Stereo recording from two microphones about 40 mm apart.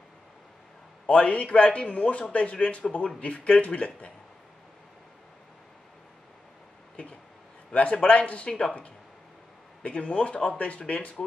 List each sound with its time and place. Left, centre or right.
1.0 s a man's voice: left
7.7 s a man's voice: left